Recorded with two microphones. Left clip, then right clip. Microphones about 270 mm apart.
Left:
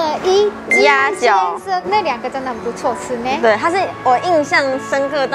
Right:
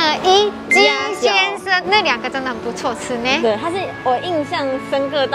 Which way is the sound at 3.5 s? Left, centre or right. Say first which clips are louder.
Left 5 dB; left.